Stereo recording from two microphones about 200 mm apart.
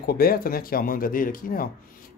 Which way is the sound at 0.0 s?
50° left (ahead or behind).